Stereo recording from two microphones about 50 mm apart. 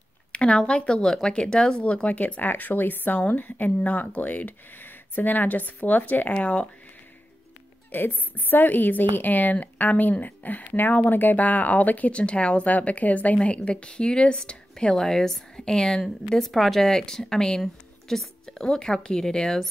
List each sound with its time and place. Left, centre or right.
0.3 s speech: centre
2.1 s a woman's voice: left
7.9 s a woman's voice: left; by 16.0 s centre
16.3 s a woman's voice: centre